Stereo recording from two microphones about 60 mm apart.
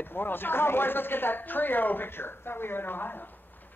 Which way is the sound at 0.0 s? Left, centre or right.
Left.